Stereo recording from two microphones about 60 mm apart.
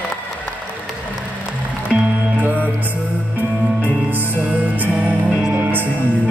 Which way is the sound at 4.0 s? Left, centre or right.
Right.